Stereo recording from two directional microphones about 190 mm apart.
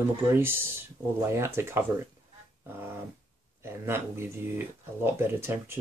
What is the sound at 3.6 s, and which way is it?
Speech, 10° right (ahead or behind).